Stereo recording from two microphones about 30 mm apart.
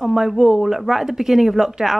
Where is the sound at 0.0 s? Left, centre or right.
Centre.